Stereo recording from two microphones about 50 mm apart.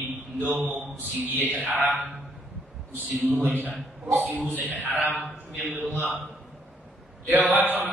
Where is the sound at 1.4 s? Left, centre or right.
Left.